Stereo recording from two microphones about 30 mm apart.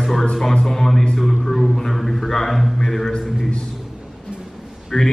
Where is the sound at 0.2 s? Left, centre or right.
Centre.